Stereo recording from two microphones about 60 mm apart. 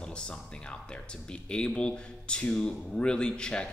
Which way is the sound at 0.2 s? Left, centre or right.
Centre.